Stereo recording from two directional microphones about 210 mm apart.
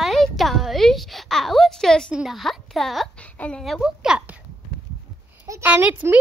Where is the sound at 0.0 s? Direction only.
Centre (ahead or behind).